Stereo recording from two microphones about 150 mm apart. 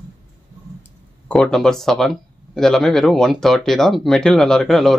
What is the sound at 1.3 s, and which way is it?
Speech, 5° left (ahead or behind).